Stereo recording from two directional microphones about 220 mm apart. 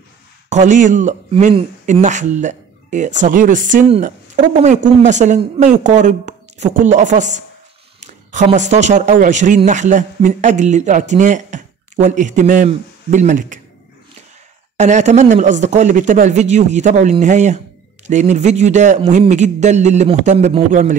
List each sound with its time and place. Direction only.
0.5 s a man's voice: 35° right (ahead or behind)
14.8 s speech: 30° right (ahead or behind)